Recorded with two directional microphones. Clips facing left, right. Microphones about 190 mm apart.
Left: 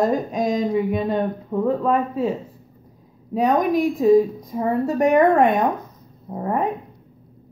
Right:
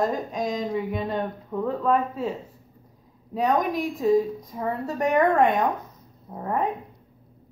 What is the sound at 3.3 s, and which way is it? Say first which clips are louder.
A woman's voice: left 5 dB; 10° left (ahead or behind).